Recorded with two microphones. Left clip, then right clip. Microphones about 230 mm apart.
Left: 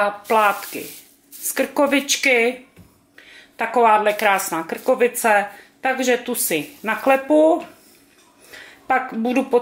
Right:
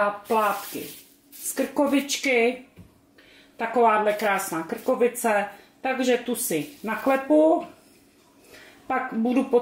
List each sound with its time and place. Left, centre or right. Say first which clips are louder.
0.0 s speech: left 6 dB; centre
1.8 s speech: left 6 dB; centre
3.5 s speech: left 5 dB; centre
7.2 s speech: left 1 dB; centre
8.8 s speech: left 6 dB; centre